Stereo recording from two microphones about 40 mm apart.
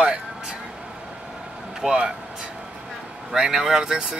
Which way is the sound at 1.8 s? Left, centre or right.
Right.